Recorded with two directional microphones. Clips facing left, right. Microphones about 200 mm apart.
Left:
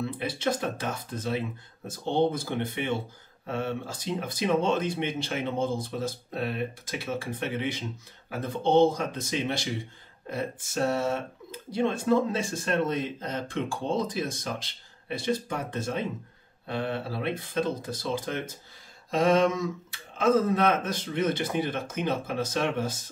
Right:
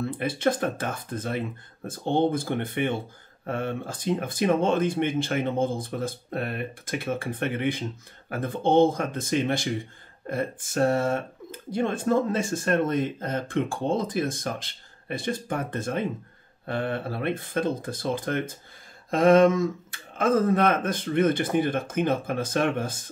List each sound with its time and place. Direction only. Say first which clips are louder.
0.0 s speech: right 4 dB; 50° right (ahead or behind)